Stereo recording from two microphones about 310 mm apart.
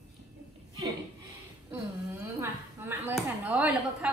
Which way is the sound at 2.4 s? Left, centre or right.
Centre.